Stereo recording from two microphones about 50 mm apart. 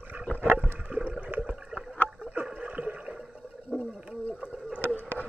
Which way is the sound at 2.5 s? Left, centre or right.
Right.